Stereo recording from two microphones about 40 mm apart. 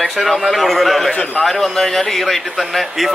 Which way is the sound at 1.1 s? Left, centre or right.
Left.